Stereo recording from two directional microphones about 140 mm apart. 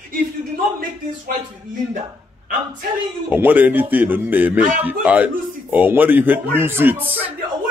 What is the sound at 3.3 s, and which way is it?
Speech, 15° right (ahead or behind).